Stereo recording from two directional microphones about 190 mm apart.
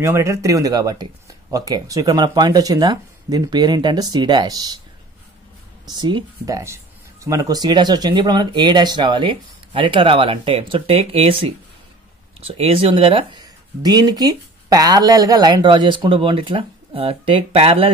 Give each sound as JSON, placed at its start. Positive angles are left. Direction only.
{"t": 0.0, "sound": "speech", "side_deg": -15}
{"t": 5.9, "sound": "speech", "side_deg": -25}